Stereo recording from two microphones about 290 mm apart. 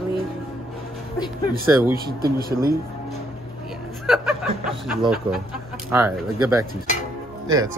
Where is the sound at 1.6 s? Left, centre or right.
Centre.